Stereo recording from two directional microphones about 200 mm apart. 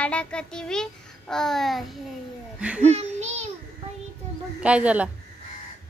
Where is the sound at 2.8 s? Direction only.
35° right (ahead or behind).